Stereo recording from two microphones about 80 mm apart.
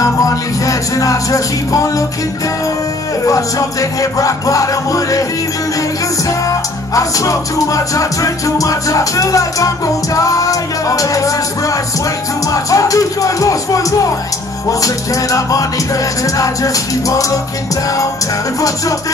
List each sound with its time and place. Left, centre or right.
0.0 s music: left
3.3 s music: left
7.0 s music: left
12.7 s music: left
16.3 s music: left